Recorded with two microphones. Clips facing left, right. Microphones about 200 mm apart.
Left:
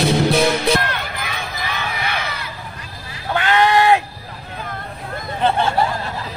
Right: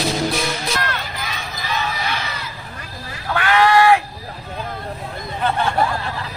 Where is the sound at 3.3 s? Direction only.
20° left (ahead or behind).